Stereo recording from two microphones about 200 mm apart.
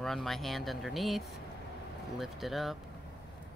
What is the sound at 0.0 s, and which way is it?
A woman's voice, centre (ahead or behind).